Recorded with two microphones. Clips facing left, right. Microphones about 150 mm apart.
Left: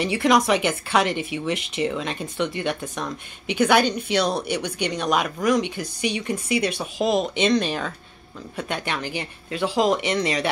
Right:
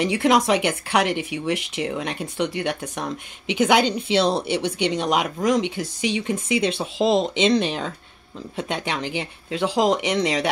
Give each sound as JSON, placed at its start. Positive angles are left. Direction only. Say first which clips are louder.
{"t": 0.0, "sound": "speech", "louder": "right 1 dB", "side_deg": -20}